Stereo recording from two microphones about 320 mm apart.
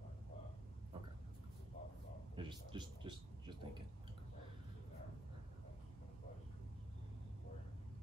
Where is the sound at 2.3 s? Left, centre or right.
Centre.